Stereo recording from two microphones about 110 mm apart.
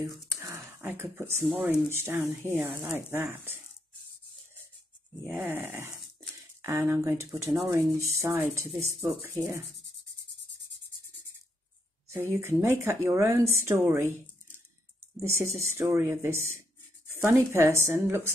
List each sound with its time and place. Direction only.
0.3 s a sound: 25° right (ahead or behind)
1.9 s speech: 20° right (ahead or behind)
5.2 s speech: 20° right (ahead or behind)
12.1 s speech: 20° right (ahead or behind)
15.6 s speech: 25° right (ahead or behind)